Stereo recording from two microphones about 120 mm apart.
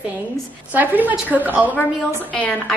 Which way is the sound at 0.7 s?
15° right (ahead or behind).